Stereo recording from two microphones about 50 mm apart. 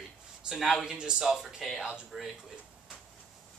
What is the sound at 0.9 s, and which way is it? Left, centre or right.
Speech, centre.